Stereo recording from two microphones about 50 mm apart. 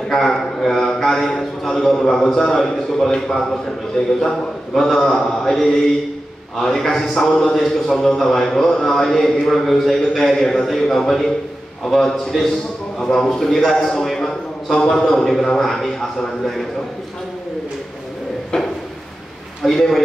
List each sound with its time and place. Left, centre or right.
0.1 s a man's voice: centre
4.0 s a man's voice: left
4.7 s a man's voice: centre
6.6 s a man's voice: centre
19.6 s a man's voice: centre